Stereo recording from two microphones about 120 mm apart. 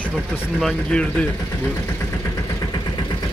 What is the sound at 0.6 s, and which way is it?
Speech, centre (ahead or behind).